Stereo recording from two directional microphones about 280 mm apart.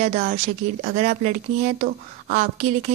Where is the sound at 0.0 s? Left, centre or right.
Right.